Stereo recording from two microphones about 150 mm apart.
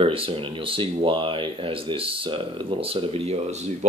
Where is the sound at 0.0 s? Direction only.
35° right (ahead or behind).